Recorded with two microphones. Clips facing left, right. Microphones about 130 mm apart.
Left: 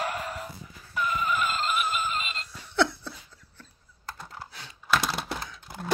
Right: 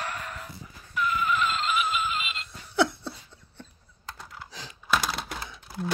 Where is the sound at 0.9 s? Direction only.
40° left (ahead or behind).